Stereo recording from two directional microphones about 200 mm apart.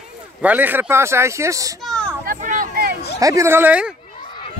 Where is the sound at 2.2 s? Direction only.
40° right (ahead or behind).